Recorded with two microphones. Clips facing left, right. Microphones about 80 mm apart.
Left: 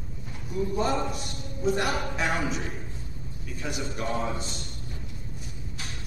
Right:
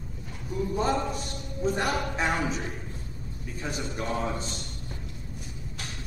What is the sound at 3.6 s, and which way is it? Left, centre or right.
Speech, right.